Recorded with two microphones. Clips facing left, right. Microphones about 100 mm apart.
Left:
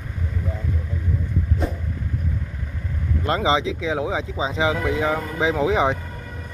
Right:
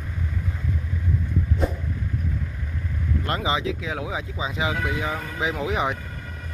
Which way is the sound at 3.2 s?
25° left (ahead or behind).